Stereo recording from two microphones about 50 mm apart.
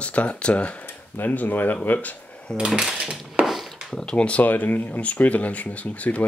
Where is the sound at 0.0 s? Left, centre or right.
Left.